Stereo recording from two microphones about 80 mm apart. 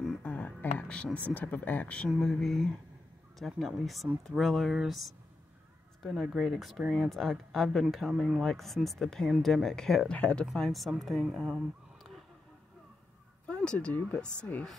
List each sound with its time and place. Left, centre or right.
0.2 s a sound: centre
1.3 s speech: left
2.0 s speech: centre
10.1 s speech: centre
10.4 s speech: centre
13.5 s speech: centre